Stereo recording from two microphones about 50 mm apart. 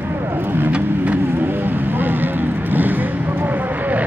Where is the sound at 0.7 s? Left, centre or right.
Right.